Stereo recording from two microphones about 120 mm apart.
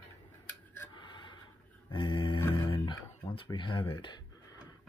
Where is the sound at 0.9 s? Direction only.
40° left (ahead or behind).